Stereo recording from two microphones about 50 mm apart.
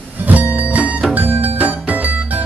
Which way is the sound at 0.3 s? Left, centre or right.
Right.